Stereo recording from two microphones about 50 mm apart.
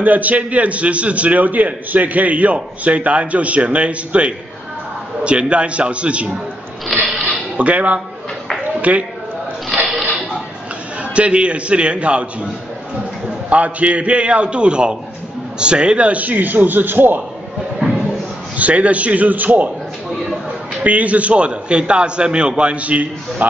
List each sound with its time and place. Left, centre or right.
0.0 s a man's voice: right
6.9 s mechanisms: centre
7.2 s a sound: right
8.9 s a man's voice: right
11.0 s a man's voice: right
13.5 s a man's voice: right
18.6 s a man's voice: right
20.8 s a man's voice: right